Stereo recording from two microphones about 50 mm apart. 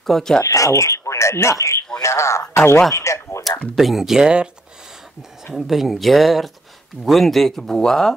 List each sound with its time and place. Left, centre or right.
0.0 s speech: centre
0.4 s a sound: left
2.0 s speech: left
2.9 s a sound: left
3.7 s speech: centre
5.5 s speech: centre